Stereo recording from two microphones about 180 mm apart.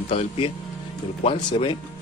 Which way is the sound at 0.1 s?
30° left (ahead or behind).